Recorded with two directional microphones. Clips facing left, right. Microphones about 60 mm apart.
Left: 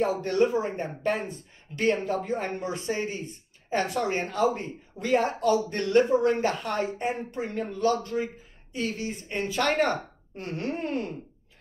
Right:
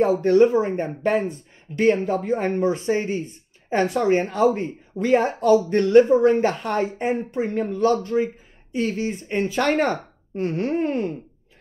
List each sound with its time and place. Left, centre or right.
0.2 s speech: right